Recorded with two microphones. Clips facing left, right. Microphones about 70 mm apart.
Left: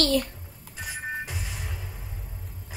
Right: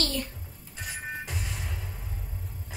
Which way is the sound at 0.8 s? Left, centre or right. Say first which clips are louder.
Left 3 dB; centre.